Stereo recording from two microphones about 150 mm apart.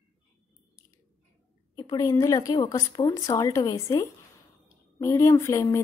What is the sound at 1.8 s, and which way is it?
Speech, 25° left (ahead or behind).